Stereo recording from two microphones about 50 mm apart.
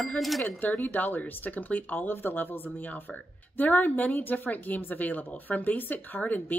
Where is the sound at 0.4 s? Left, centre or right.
Left.